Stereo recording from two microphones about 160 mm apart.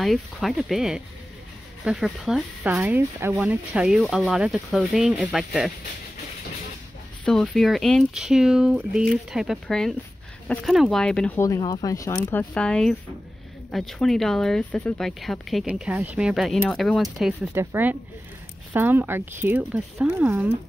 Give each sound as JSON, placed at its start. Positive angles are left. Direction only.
{"t": 0.0, "sound": "speech", "side_deg": 0}
{"t": 7.2, "sound": "speech", "side_deg": 5}
{"t": 11.3, "sound": "speech", "side_deg": 20}
{"t": 12.3, "sound": "speech", "side_deg": 10}
{"t": 17.6, "sound": "speech", "side_deg": -10}